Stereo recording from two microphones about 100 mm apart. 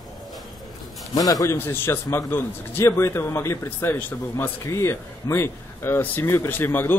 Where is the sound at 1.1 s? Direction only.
35° left (ahead or behind).